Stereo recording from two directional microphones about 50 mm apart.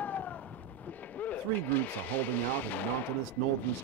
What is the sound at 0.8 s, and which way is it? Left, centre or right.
Speech, left.